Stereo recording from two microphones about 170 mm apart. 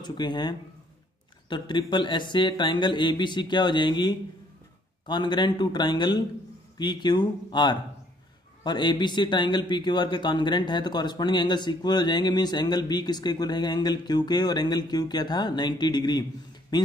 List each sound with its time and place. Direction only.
0.0 s a man's voice: 25° left (ahead or behind)